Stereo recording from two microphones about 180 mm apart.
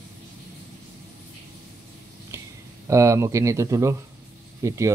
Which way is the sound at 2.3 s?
15° right (ahead or behind).